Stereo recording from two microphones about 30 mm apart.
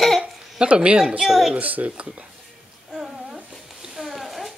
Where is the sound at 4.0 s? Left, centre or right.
Centre.